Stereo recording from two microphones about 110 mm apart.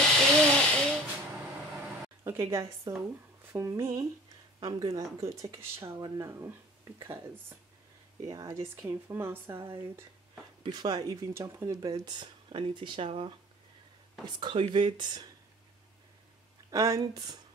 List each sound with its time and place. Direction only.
0.4 s hiss: 10° left (ahead or behind)
2.2 s a woman's voice: 25° right (ahead or behind)
10.6 s speech: 40° right (ahead or behind)
16.7 s speech: 25° right (ahead or behind)
17.0 s speech: 35° right (ahead or behind)